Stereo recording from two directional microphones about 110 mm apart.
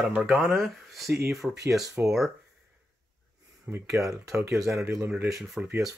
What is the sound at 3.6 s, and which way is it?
Speech, 25° right (ahead or behind).